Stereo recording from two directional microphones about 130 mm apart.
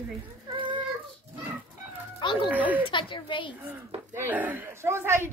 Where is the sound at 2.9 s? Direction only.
40° left (ahead or behind).